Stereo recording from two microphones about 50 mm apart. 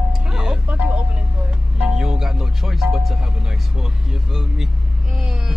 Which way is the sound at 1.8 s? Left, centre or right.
Centre.